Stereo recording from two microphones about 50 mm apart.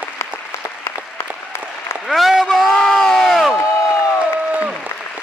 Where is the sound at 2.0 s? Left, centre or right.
Centre.